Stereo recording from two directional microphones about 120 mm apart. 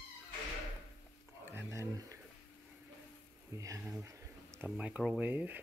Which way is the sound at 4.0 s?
20° right (ahead or behind).